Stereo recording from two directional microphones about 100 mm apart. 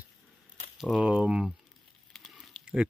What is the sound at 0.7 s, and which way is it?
Speech, 5° right (ahead or behind).